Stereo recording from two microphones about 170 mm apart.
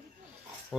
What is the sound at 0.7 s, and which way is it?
Filing, 5° right (ahead or behind).